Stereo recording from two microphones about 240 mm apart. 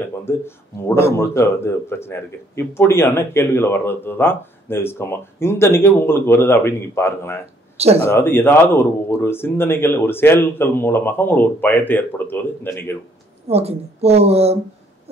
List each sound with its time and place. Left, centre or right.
1.1 s a man's voice: centre
7.7 s speech: right
8.1 s a man's voice: centre
13.5 s speech: right